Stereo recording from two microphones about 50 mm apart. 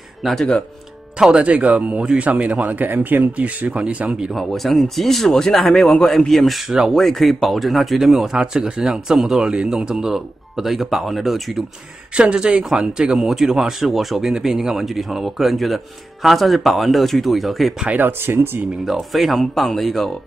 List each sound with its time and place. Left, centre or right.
0.2 s speech: centre
1.3 s speech: right
4.3 s speech: centre
12.2 s speech: centre
18.0 s speech: right
18.9 s speech: centre